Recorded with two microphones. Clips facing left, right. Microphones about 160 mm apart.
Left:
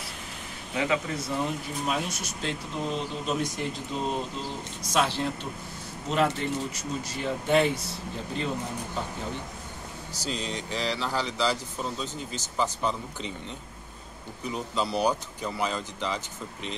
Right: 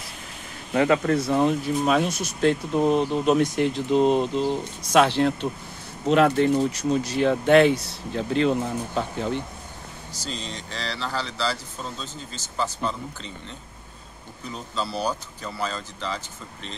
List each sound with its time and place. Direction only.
0.7 s speech: 55° right (ahead or behind); by 9.4 s 80° right
10.1 s speech: 10° left (ahead or behind)
14.4 s speech: 15° left (ahead or behind)